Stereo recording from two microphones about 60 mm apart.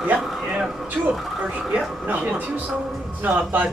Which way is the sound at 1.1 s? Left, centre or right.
Centre.